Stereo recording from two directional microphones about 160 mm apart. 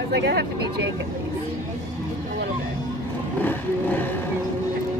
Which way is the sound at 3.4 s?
10° left (ahead or behind).